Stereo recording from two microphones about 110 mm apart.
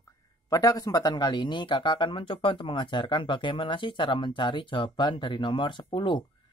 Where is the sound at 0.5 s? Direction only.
35° left (ahead or behind).